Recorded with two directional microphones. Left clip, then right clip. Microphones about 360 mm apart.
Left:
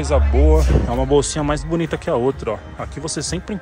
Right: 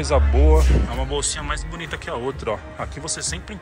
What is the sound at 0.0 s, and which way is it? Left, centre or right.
Speech, centre.